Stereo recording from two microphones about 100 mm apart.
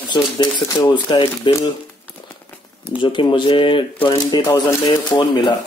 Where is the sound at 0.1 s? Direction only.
45° left (ahead or behind).